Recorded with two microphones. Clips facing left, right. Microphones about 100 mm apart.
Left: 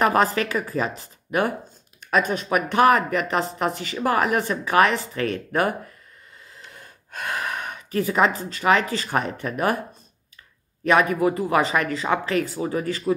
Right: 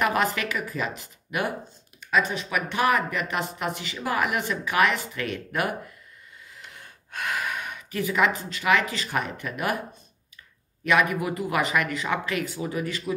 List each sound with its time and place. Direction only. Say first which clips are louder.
0.0 s speech: left 5 dB; 35° left (ahead or behind)
2.0 s speech: left 3 dB; 45° left (ahead or behind)
10.9 s speech: left 4 dB; 35° left (ahead or behind)